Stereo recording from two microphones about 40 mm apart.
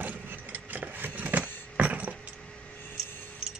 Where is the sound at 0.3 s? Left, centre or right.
Right.